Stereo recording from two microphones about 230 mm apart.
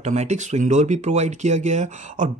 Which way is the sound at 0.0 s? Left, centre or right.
Right.